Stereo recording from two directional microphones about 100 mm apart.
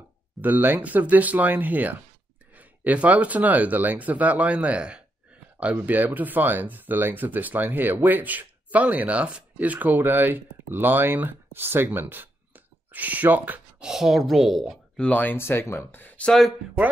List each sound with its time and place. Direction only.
0.4 s speech: 20° right (ahead or behind)
13.8 s a woman's voice: 5° right (ahead or behind)
15.0 s speech: 15° left (ahead or behind)
16.3 s a woman's voice: 5° left (ahead or behind)